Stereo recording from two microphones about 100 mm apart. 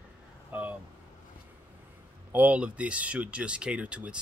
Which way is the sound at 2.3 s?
15° right (ahead or behind).